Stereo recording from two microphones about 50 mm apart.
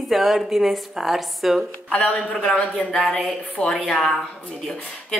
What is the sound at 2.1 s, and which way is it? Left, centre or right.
Speech, left.